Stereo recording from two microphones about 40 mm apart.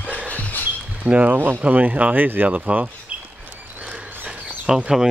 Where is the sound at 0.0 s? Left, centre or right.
Right.